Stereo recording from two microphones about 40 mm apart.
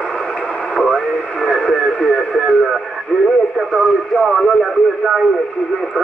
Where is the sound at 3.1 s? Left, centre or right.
Left.